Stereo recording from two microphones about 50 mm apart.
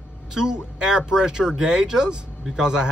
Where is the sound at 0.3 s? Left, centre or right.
Centre.